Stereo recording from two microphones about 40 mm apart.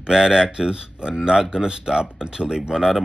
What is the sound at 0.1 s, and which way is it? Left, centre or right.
Speech, centre.